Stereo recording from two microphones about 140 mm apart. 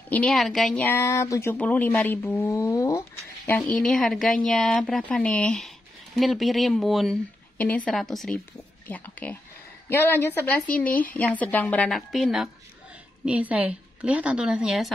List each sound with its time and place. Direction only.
0.1 s a woman's voice: 5° left (ahead or behind)
0.8 s speech: 15° left (ahead or behind)
3.4 s a woman's voice: 10° left (ahead or behind)
7.5 s a woman's voice: 10° left (ahead or behind)
8.8 s a woman's voice: 10° left (ahead or behind)